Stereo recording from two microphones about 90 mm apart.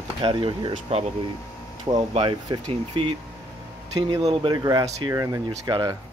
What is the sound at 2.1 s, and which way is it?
Speech, 75° right (ahead or behind).